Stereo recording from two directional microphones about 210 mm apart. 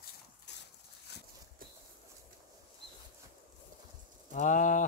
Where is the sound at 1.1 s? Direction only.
50° left (ahead or behind).